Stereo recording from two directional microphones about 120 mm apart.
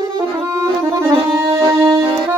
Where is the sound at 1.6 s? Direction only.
45° right (ahead or behind).